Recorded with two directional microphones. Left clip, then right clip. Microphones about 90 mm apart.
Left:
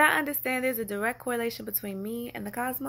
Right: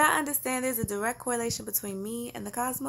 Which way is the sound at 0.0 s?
15° right (ahead or behind).